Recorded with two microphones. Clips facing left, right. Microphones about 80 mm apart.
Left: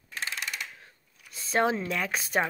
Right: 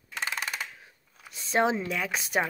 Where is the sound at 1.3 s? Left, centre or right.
Right.